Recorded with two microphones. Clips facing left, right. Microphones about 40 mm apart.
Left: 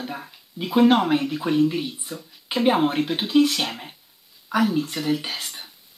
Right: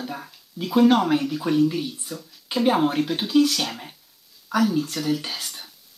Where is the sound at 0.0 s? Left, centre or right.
Centre.